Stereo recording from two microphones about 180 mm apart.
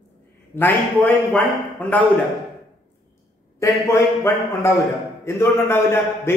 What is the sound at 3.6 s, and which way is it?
A man's voice, 15° left (ahead or behind).